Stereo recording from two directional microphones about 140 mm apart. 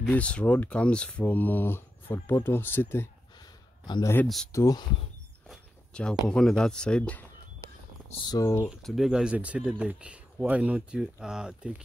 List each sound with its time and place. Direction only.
0.1 s speech: 10° left (ahead or behind)
3.8 s speech: 30° left (ahead or behind)
5.5 s speech: 5° left (ahead or behind)
8.3 s speech: 25° left (ahead or behind)
8.6 s speech: centre (ahead or behind)